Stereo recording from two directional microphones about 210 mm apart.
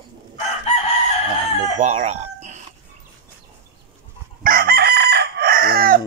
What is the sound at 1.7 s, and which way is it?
Speech, 35° right (ahead or behind).